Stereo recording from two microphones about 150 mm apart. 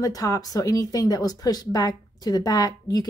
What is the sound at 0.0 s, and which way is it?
A woman's voice, 25° left (ahead or behind).